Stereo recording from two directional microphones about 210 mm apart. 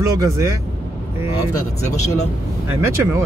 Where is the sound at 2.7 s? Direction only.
10° right (ahead or behind).